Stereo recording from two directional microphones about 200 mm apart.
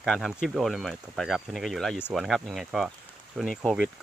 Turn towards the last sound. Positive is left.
turn(degrees=0)  # may be behind; listen again after turning